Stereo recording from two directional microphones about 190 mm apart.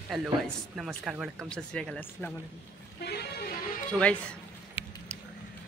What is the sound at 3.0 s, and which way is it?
Vehicle, 60° left (ahead or behind).